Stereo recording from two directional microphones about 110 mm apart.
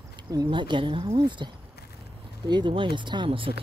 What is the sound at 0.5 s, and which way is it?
Speech, 45° right (ahead or behind).